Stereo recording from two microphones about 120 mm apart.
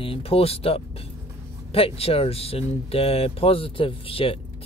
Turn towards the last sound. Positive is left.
turn(degrees=50)  # may be behind; listen again after turning